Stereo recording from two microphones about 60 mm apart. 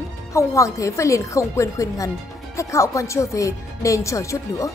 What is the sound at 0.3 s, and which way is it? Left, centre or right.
Speech, left.